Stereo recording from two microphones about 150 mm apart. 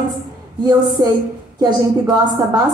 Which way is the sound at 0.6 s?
25° right (ahead or behind).